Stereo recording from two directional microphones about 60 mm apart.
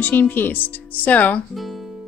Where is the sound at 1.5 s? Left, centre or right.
Centre.